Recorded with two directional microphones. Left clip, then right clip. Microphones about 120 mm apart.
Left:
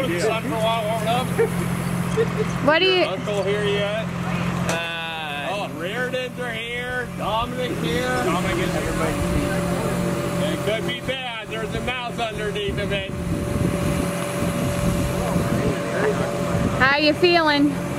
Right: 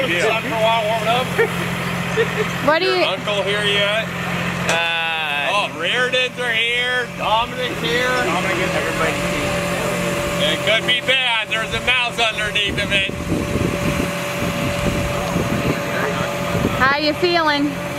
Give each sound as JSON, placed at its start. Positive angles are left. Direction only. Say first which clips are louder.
{"t": 0.3, "sound": "speech", "louder": "right 5 dB", "side_deg": 20}
{"t": 2.6, "sound": "a woman's voice", "louder": "right 1 dB", "side_deg": 0}
{"t": 5.5, "sound": "a sound", "louder": "right 8 dB", "side_deg": -5}
{"t": 10.4, "sound": "speech", "louder": "right 9 dB", "side_deg": -20}
{"t": 16.8, "sound": "a woman's voice", "louder": "even", "side_deg": 5}